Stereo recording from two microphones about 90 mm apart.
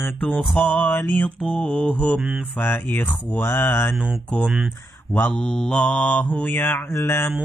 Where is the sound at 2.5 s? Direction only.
20° left (ahead or behind).